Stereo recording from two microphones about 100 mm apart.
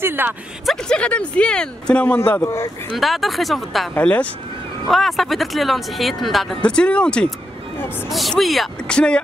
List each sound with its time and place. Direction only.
0.0 s speech: 20° right (ahead or behind)
0.7 s speech: 10° left (ahead or behind)
2.1 s speech: 25° left (ahead or behind)
3.0 s speech: centre (ahead or behind)
4.0 s speech: 15° left (ahead or behind)
4.8 s speech: centre (ahead or behind)
6.6 s speech: 10° left (ahead or behind)